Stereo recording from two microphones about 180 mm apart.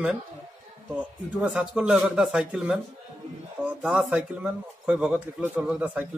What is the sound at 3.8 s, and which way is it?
A man's voice, 5° right (ahead or behind).